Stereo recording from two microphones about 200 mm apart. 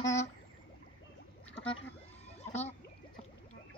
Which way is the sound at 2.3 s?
35° left (ahead or behind).